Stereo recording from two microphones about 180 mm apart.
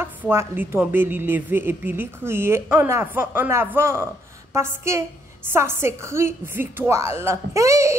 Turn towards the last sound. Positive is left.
turn(degrees=-15)  # may be behind; listen again after turning